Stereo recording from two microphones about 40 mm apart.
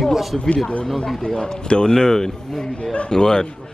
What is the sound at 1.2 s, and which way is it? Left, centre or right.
A man's voice, centre.